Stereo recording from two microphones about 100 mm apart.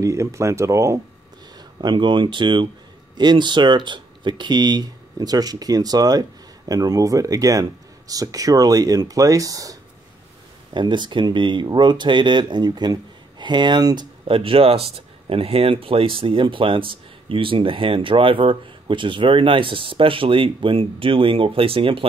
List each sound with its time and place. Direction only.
0.0 s speech: 30° right (ahead or behind)
1.6 s speech: 45° right (ahead or behind)
10.7 s speech: 50° right (ahead or behind)